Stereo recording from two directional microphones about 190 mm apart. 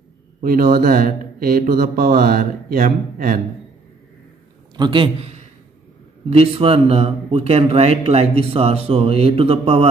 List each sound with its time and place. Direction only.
0.4 s speech: 50° right (ahead or behind)
4.7 s a man's voice: 25° right (ahead or behind)